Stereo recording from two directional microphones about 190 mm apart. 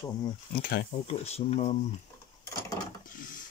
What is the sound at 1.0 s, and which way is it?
Speech, 35° left (ahead or behind).